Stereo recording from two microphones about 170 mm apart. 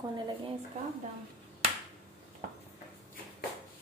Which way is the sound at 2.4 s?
60° right (ahead or behind).